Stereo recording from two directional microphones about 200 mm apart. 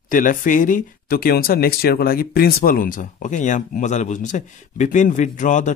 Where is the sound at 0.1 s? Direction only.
40° left (ahead or behind).